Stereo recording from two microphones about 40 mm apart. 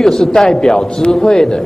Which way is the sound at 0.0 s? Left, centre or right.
Centre.